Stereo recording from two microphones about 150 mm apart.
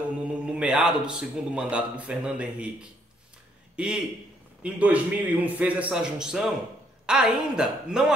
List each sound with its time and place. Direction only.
0.3 s a man's voice: 5° right (ahead or behind)
3.7 s a man's voice: 5° right (ahead or behind)